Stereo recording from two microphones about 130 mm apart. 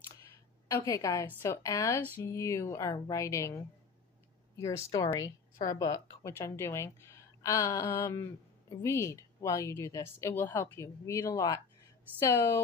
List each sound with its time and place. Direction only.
0.2 s a woman's voice: 25° left (ahead or behind)
4.6 s speech: 25° left (ahead or behind)